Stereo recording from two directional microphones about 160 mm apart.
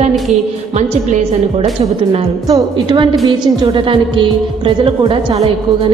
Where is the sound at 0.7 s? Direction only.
45° right (ahead or behind).